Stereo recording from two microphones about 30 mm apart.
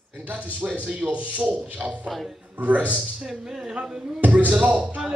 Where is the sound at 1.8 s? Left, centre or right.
Right.